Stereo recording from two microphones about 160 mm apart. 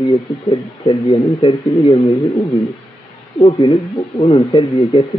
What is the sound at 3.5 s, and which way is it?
Speech, 30° left (ahead or behind).